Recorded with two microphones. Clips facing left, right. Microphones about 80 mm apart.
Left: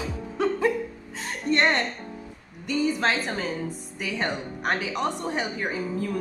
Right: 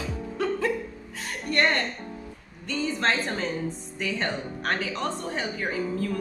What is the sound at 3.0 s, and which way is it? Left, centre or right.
Speech, centre.